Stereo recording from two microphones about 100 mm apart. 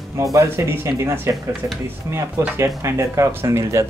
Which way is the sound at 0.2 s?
35° right (ahead or behind).